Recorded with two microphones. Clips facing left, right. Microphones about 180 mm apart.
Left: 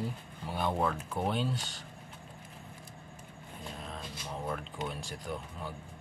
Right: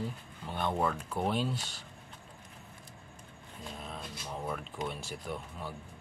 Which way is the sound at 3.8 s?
Centre (ahead or behind).